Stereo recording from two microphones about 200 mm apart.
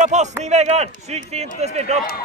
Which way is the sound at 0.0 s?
35° right (ahead or behind).